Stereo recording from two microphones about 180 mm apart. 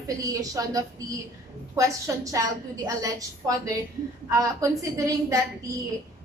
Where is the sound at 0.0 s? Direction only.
20° right (ahead or behind).